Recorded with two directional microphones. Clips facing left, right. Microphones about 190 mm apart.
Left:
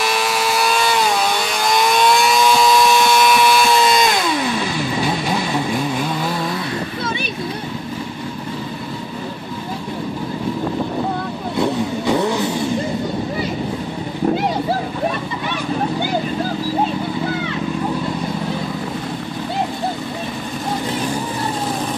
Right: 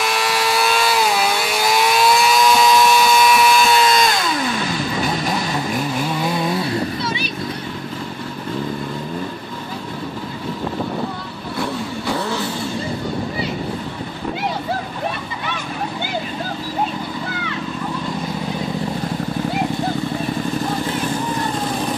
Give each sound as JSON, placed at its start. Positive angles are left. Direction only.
{"t": 0.0, "sound": "vehicle", "side_deg": 0}
{"t": 6.2, "sound": "vehicle", "side_deg": -15}
{"t": 11.5, "sound": "vehicle", "side_deg": 20}